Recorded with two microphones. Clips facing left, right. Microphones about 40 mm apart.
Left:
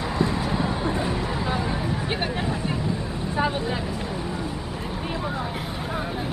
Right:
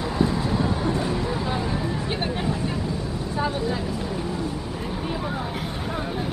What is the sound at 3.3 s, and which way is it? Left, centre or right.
Speech, left.